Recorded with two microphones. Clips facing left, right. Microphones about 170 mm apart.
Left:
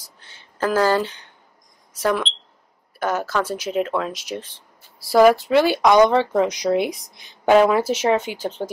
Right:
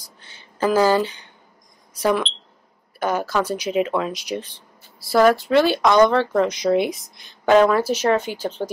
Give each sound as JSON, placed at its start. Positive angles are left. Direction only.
{"t": 0.6, "sound": "speech", "side_deg": -5}
{"t": 6.6, "sound": "speech", "side_deg": 5}
{"t": 7.8, "sound": "speech", "side_deg": 25}